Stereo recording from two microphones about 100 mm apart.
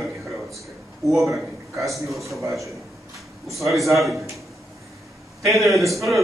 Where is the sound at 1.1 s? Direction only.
Centre (ahead or behind).